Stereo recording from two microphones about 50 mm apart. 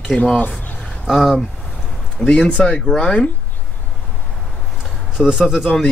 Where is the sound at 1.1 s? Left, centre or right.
Centre.